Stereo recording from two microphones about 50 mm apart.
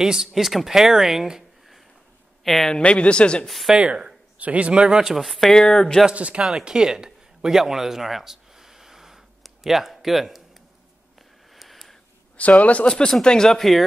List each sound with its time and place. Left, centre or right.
0.0 s speech: centre
2.8 s speech: left
3.4 s speech: centre
3.7 s speech: centre
6.0 s speech: right
6.6 s a sound: centre
12.4 s speech: left
12.8 s speech: centre